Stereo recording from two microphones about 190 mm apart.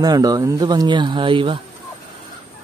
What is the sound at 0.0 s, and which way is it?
Speech, 20° right (ahead or behind).